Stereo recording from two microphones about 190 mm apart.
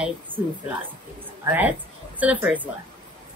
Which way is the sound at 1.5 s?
10° right (ahead or behind).